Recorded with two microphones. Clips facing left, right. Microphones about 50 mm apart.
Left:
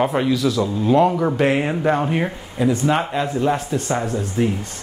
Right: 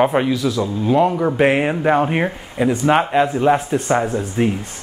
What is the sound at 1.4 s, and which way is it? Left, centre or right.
Speech, right.